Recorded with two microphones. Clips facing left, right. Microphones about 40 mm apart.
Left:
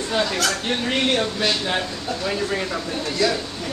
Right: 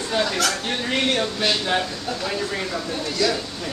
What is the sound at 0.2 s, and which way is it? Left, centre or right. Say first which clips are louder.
Speech: even; centre.